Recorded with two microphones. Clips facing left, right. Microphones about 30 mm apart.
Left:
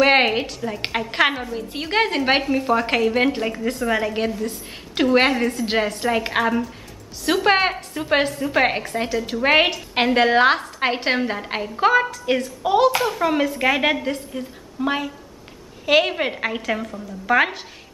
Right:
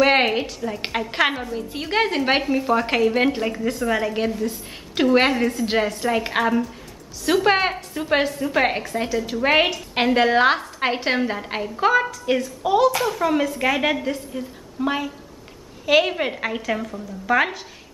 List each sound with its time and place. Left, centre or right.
0.0 s a woman's voice: centre